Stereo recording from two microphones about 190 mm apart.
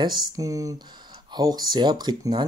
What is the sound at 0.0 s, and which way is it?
Speech, 20° right (ahead or behind).